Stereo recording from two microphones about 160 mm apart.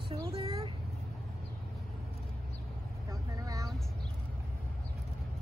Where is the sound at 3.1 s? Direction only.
20° right (ahead or behind).